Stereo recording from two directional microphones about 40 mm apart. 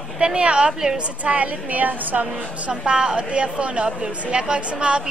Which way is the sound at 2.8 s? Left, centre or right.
Right.